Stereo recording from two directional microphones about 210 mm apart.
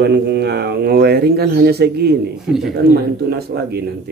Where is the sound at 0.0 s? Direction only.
55° right (ahead or behind).